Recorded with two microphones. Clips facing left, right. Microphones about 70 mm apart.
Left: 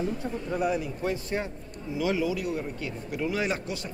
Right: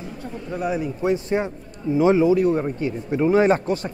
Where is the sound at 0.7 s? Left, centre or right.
Right.